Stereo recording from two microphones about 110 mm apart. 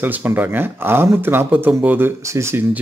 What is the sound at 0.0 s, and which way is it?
Speech, 20° right (ahead or behind).